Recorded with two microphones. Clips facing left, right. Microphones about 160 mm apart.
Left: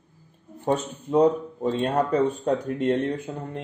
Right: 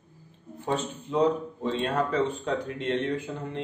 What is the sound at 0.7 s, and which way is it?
Speech, 50° left (ahead or behind).